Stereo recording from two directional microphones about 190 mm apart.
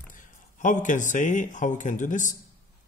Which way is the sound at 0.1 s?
40° left (ahead or behind).